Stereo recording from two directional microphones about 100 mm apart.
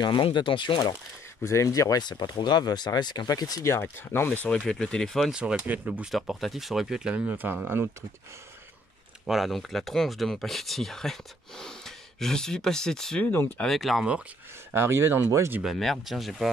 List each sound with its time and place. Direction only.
0.0 s speech: 55° left (ahead or behind)
1.4 s speech: 30° left (ahead or behind); by 5.3 s 5° left (ahead or behind)
5.3 s speech: 10° right (ahead or behind)
6.1 s speech: centre (ahead or behind); by 7.9 s 20° right (ahead or behind)
9.2 s speech: centre (ahead or behind)
14.7 s speech: 25° right (ahead or behind)
15.6 s speech: centre (ahead or behind)